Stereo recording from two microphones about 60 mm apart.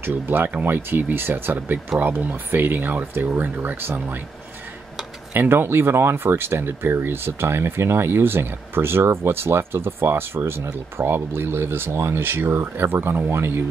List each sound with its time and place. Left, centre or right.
0.0 s speech: right
5.3 s speech: right